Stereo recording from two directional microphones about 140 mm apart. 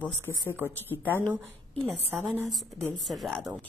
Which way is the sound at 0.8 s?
15° left (ahead or behind).